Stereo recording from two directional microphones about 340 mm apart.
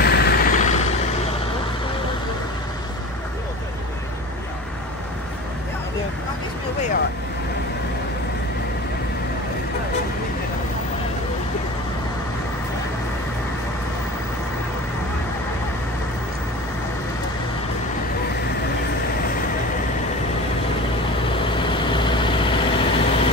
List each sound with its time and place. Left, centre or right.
0.0 s vehicle: left
21.5 s vehicle: centre